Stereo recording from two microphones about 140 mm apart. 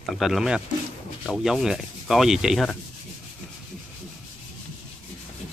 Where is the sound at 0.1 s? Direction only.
Centre (ahead or behind).